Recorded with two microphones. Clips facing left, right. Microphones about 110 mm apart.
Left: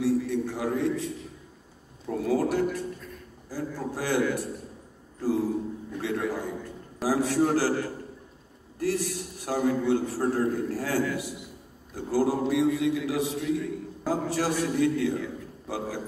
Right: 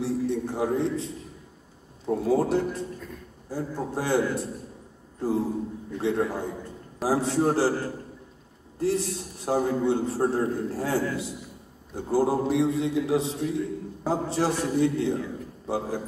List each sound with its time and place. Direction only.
0.0 s a sound: 30° right (ahead or behind)
2.0 s a man's voice: 25° right (ahead or behind)
5.9 s a man's voice: 25° right (ahead or behind)